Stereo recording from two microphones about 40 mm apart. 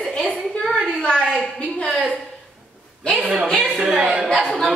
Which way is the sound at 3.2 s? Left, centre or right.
Right.